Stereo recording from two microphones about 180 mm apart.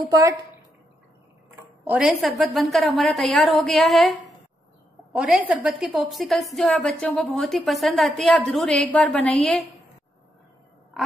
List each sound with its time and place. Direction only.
0.1 s a woman's voice: 15° right (ahead or behind)
1.9 s a woman's voice: 5° right (ahead or behind)
5.1 s a woman's voice: 5° right (ahead or behind)